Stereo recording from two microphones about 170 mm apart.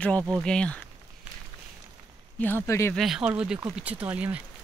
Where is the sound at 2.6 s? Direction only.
15° left (ahead or behind).